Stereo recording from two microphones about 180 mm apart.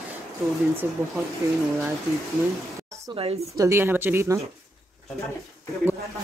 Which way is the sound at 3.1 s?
35° right (ahead or behind).